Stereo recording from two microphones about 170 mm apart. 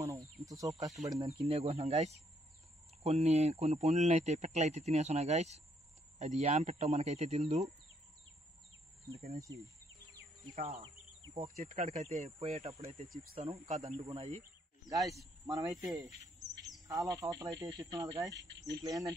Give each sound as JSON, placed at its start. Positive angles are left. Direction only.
{"t": 0.0, "sound": "a sound", "side_deg": -20}
{"t": 1.5, "sound": "speech", "side_deg": -35}
{"t": 10.5, "sound": "speech", "side_deg": -45}
{"t": 14.9, "sound": "speech", "side_deg": -20}